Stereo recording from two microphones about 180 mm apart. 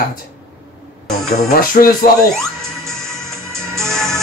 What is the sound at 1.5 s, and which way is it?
Speech, 50° left (ahead or behind).